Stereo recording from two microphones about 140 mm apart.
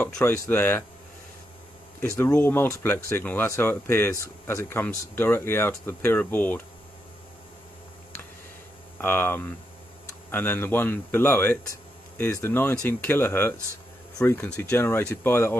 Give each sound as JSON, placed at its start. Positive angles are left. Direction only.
{"t": 0.2, "sound": "speech", "side_deg": 15}
{"t": 2.1, "sound": "speech", "side_deg": 10}
{"t": 9.0, "sound": "speech", "side_deg": 15}